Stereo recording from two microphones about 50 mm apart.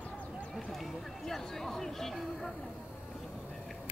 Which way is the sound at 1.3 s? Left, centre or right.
Centre.